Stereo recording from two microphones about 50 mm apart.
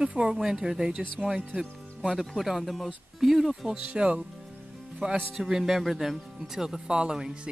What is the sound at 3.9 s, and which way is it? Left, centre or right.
Speech, centre.